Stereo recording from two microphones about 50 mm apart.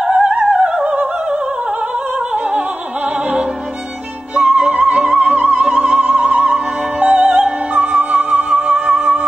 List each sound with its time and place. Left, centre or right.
0.0 s opera: centre
0.5 s opera: centre
4.4 s music: right